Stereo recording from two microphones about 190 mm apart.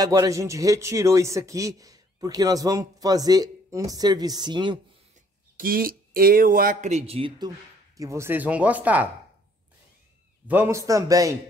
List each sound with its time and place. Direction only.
0.0 s a man's voice: 20° right (ahead or behind)
5.6 s speech: 50° right (ahead or behind); by 9.1 s 10° right (ahead or behind)
10.4 s speech: 10° right (ahead or behind)